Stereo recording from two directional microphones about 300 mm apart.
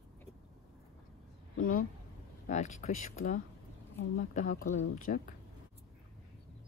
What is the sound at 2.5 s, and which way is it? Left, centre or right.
A woman's voice, left.